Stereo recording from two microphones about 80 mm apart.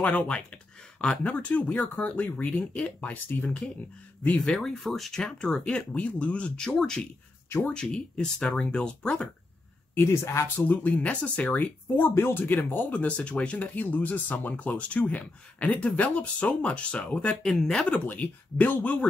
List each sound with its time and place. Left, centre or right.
0.0 s speech: centre
4.4 s speech: centre
9.9 s speech: left
10.6 s speech: left; by 17.8 s centre
17.8 s speech: centre